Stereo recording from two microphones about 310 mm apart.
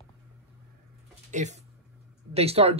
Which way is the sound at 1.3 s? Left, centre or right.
Right.